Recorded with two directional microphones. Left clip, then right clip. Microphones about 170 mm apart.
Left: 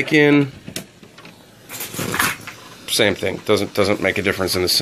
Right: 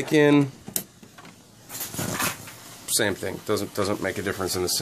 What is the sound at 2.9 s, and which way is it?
Speech, 5° left (ahead or behind).